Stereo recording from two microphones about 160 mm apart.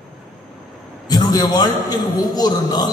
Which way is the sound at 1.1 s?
25° left (ahead or behind).